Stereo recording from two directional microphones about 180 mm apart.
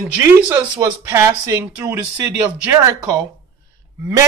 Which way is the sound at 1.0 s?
15° right (ahead or behind).